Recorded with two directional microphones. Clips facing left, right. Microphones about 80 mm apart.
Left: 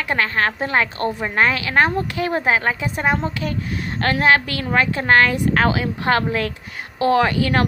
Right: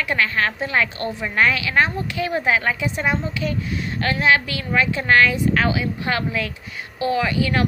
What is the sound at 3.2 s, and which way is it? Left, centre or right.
A woman's voice, left.